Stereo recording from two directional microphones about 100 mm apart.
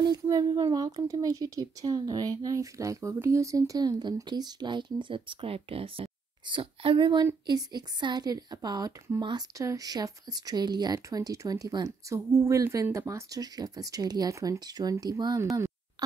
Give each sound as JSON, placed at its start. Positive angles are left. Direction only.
{"t": 0.0, "sound": "a woman's voice", "side_deg": -45}
{"t": 7.4, "sound": "a woman's voice", "side_deg": -45}